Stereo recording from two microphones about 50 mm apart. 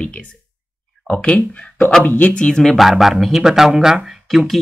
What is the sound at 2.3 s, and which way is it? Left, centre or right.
Speech, centre.